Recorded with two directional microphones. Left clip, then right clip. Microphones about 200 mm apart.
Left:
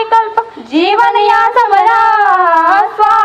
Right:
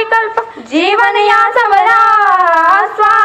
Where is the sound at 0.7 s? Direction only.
40° right (ahead or behind).